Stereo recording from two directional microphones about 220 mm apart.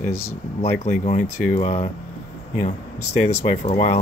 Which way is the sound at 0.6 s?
30° left (ahead or behind).